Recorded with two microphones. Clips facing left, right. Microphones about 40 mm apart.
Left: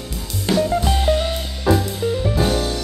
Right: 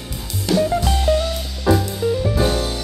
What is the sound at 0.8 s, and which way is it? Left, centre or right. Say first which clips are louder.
Music: even; centre.